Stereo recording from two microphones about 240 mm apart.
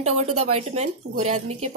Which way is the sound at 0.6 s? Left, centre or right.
Right.